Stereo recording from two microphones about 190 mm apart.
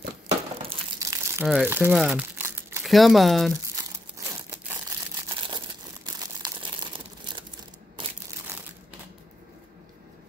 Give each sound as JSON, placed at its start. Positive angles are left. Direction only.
{"t": 0.9, "sound": "crumpling", "side_deg": -15}
{"t": 2.8, "sound": "speech", "side_deg": 0}
{"t": 4.3, "sound": "crumpling", "side_deg": -15}